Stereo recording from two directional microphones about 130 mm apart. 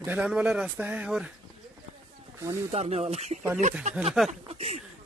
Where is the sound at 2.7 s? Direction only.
55° right (ahead or behind).